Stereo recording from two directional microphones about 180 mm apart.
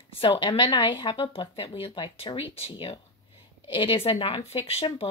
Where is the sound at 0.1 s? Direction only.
30° left (ahead or behind).